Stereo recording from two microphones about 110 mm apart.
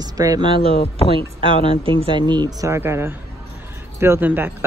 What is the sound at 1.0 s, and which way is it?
Speech, 55° right (ahead or behind).